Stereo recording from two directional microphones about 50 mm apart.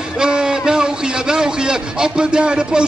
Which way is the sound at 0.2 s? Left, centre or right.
Centre.